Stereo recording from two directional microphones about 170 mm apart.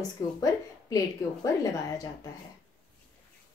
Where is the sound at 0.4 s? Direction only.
20° left (ahead or behind).